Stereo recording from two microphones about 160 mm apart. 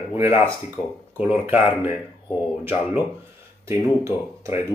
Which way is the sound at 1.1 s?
10° right (ahead or behind).